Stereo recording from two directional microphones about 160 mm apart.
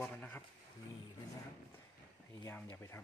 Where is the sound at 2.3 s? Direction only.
15° left (ahead or behind).